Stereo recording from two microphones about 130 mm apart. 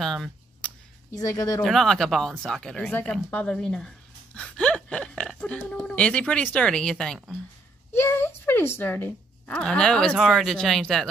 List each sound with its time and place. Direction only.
0.0 s a sound: centre (ahead or behind)
1.1 s speech: 25° left (ahead or behind)
1.6 s speech: centre (ahead or behind)
2.9 s speech: 15° left (ahead or behind)
7.9 s speech: 15° left (ahead or behind); by 11.1 s centre (ahead or behind)